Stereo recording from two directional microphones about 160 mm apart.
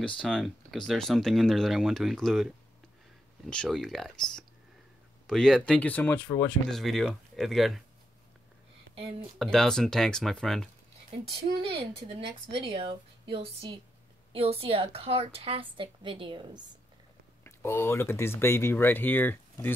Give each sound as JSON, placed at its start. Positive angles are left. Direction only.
{"t": 0.0, "sound": "speech", "side_deg": 5}
{"t": 6.7, "sound": "speech", "side_deg": 0}
{"t": 9.4, "sound": "speech", "side_deg": 5}
{"t": 11.7, "sound": "a woman's voice", "side_deg": -35}
{"t": 17.4, "sound": "speech", "side_deg": 15}